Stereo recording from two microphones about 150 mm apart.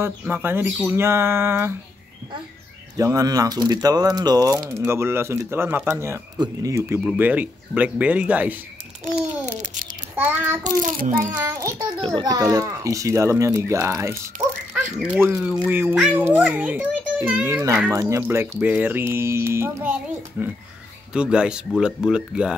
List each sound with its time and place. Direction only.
0.0 s speech: 15° right (ahead or behind)
3.0 s speech: 20° right (ahead or behind)
7.1 s speech: 10° right (ahead or behind)
10.1 s child singing: 15° right (ahead or behind)
10.6 s a child's voice: 60° right (ahead or behind)
11.3 s speech: 20° right (ahead or behind)